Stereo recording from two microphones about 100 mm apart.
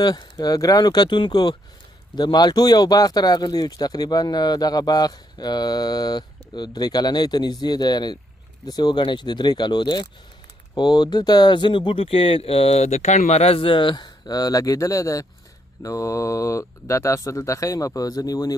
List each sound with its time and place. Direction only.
0.0 s speech: 40° left (ahead or behind)